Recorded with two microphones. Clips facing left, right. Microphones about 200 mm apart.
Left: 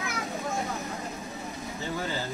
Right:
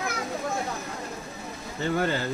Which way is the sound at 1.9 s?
65° right (ahead or behind).